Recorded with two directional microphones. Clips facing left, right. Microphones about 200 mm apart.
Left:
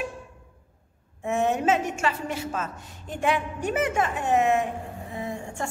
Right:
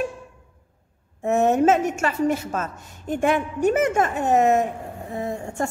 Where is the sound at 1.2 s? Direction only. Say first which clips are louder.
Right 6 dB; 45° right (ahead or behind).